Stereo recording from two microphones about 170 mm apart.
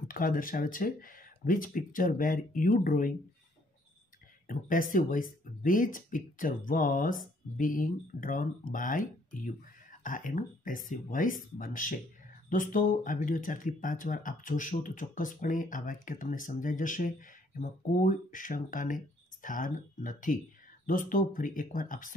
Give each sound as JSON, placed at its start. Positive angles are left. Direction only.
{"t": 0.1, "sound": "speech", "side_deg": 55}
{"t": 4.5, "sound": "speech", "side_deg": 55}